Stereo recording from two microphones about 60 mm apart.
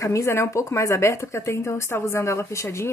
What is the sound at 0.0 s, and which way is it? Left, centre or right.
Speech, left.